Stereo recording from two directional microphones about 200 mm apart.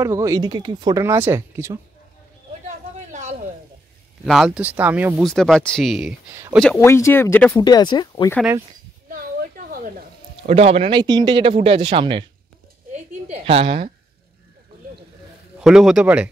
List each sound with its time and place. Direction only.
0.0 s speech: 15° right (ahead or behind)
3.1 s a sound: 35° right (ahead or behind)
4.3 s speech: centre (ahead or behind)
5.2 s speech: centre (ahead or behind)
6.3 s speech: 15° right (ahead or behind)
6.8 s speech: 15° left (ahead or behind)
7.6 s speech: 20° left (ahead or behind)
9.7 s a sound: 45° right (ahead or behind)
10.5 s speech: 30° right (ahead or behind)
12.9 s a sound: 30° right (ahead or behind)
15.6 s speech: 5° right (ahead or behind)